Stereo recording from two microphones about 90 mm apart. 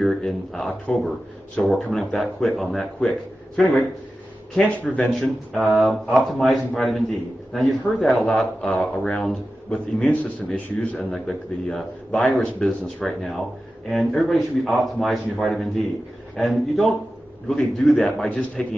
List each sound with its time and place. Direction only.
0.0 s a man's voice: 5° left (ahead or behind)
4.6 s a man's voice: 15° left (ahead or behind)
5.2 s a man's voice: centre (ahead or behind)
11.1 s a man's voice: 5° left (ahead or behind)